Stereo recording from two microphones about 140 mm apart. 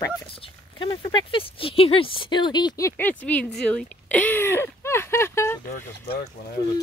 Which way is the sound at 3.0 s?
10° left (ahead or behind).